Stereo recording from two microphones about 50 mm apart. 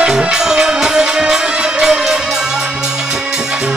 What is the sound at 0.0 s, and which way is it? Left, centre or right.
Music, centre.